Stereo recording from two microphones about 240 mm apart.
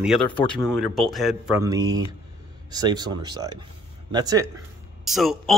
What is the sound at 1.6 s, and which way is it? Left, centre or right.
Speech, centre.